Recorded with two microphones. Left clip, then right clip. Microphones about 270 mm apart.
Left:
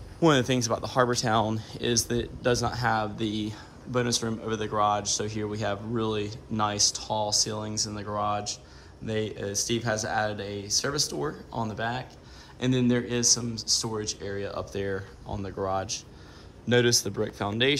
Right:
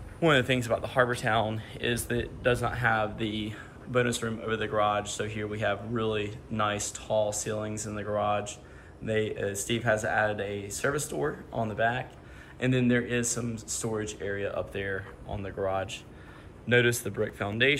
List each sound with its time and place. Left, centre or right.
0.2 s speech: centre